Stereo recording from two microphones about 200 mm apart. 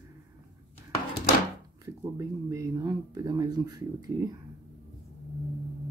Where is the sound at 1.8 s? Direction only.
15° right (ahead or behind).